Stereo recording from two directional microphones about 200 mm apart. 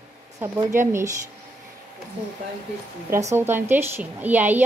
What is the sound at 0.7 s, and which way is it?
Speech, 15° right (ahead or behind).